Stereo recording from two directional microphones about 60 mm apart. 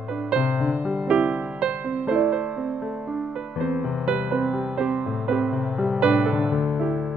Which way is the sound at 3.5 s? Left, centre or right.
Centre.